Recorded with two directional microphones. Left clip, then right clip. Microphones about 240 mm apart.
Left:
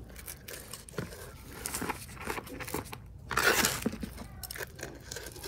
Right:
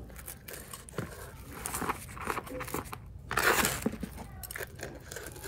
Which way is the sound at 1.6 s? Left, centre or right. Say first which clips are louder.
Right 2 dB; centre.